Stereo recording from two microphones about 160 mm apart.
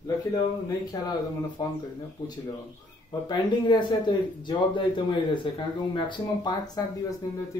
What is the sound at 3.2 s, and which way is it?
Speech, 30° left (ahead or behind).